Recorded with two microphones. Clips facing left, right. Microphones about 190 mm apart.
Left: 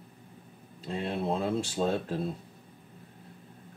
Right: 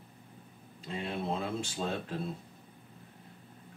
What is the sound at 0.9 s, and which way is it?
Speech, 40° left (ahead or behind).